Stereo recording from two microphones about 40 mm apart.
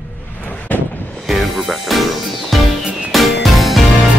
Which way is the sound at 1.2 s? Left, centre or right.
Centre.